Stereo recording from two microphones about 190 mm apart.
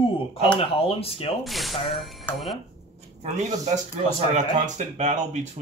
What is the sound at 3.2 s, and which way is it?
Speech, 35° right (ahead or behind).